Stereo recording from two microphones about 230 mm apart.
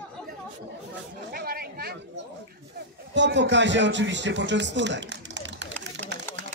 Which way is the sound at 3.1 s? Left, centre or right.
Right.